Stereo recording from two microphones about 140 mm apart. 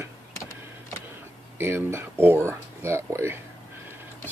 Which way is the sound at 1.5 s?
15° right (ahead or behind).